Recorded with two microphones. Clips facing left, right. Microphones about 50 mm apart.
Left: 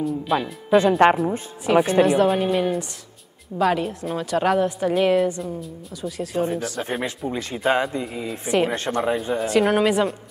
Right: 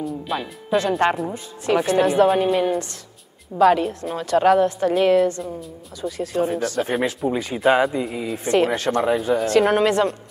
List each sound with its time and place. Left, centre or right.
0.0 s a woman's voice: centre
0.7 s speech: centre
2.0 s a woman's voice: centre